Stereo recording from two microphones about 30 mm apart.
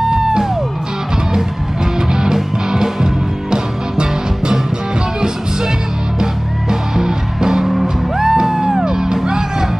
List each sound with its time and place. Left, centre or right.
0.0 s music: centre
2.0 s music: right
6.7 s music: centre
7.6 s music: centre
8.2 s music: centre